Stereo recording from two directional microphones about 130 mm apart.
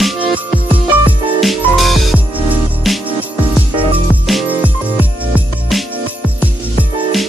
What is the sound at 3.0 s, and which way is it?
Music, 10° right (ahead or behind).